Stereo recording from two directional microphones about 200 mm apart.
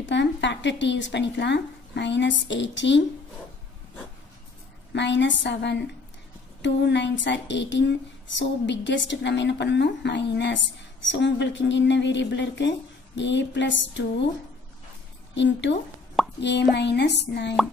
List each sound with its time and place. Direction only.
0.0 s speech: 60° left (ahead or behind)
4.9 s a woman's voice: 60° left (ahead or behind)
15.3 s a woman's voice: 60° left (ahead or behind)